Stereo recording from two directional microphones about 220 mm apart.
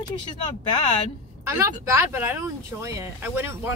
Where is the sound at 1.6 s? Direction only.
10° right (ahead or behind).